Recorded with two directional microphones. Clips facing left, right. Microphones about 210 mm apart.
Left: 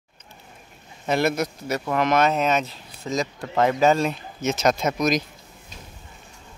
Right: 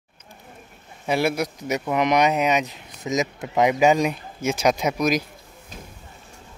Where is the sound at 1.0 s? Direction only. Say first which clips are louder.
Even; 10° right (ahead or behind).